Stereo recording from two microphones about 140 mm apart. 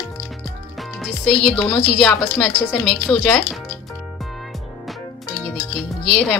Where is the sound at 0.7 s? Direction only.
Centre (ahead or behind).